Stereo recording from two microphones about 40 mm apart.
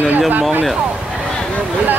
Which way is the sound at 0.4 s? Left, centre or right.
Right.